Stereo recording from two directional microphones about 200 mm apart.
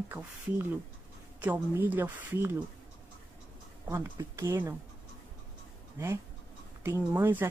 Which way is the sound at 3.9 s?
15° right (ahead or behind).